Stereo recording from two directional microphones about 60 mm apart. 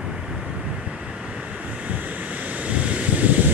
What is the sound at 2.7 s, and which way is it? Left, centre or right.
Vehicle, right.